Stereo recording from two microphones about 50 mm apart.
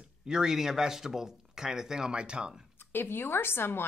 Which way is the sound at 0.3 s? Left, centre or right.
Centre.